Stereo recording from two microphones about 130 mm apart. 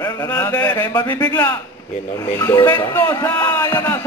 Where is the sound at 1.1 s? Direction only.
15° left (ahead or behind).